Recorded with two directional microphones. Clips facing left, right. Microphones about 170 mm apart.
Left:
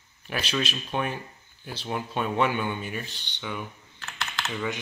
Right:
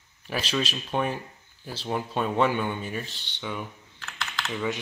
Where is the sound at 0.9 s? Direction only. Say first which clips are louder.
Right 3 dB; centre (ahead or behind).